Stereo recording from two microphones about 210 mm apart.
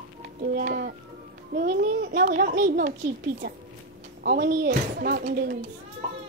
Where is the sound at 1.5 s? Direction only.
40° right (ahead or behind).